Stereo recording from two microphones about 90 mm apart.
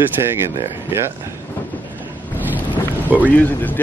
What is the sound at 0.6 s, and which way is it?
Speech, 30° right (ahead or behind).